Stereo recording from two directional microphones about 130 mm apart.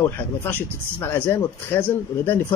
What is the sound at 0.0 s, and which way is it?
Speech, 20° left (ahead or behind).